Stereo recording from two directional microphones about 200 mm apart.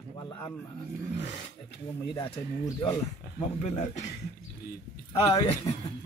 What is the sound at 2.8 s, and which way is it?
Speech, 20° left (ahead or behind).